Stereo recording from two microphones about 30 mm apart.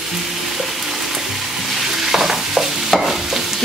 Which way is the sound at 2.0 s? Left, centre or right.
Centre.